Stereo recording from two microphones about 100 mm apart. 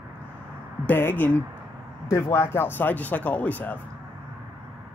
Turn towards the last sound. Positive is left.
turn(degrees=15)  # may be behind; listen again after turning